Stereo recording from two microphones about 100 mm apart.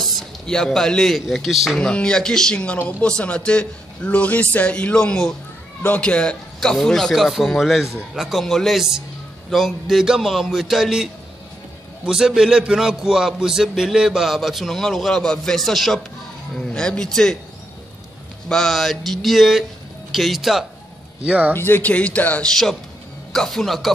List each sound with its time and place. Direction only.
0.0 s speech: centre (ahead or behind)
1.8 s a man's voice: 10° left (ahead or behind)
18.5 s a man's voice: 5° left (ahead or behind)
21.2 s speech: 15° right (ahead or behind)
21.5 s a man's voice: 20° left (ahead or behind); by 23.9 s centre (ahead or behind)